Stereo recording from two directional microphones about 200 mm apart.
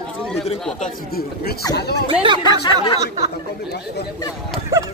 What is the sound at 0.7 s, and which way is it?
Speech, 45° left (ahead or behind).